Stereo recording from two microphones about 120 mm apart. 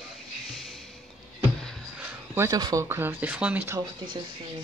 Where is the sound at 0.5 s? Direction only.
Centre (ahead or behind).